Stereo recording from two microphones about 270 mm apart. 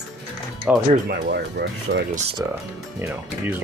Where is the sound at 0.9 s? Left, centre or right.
Right.